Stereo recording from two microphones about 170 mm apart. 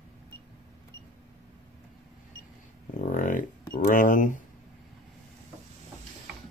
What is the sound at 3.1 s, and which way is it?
Speech, 50° left (ahead or behind).